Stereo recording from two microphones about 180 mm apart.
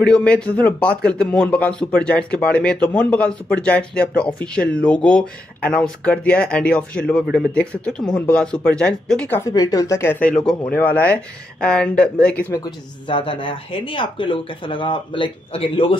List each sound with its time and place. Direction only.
0.0 s speech: 5° left (ahead or behind)
9.5 s speech: 20° left (ahead or behind)
13.1 s speech: 30° left (ahead or behind)